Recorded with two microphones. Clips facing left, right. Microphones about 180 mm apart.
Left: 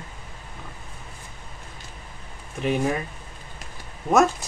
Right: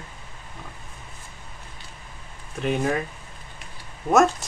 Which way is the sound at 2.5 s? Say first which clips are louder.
Even; centre (ahead or behind).